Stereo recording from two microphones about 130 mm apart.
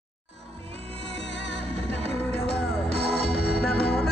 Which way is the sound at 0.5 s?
50° right (ahead or behind).